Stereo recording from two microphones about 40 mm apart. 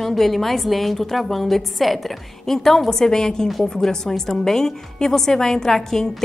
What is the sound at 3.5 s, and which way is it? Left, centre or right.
A woman's voice, centre.